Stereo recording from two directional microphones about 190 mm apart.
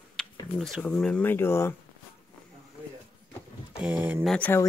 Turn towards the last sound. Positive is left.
turn(degrees=10)  # may be behind; listen again after turning